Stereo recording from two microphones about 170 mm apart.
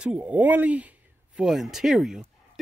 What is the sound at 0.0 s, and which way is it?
A man's voice, 5° right (ahead or behind).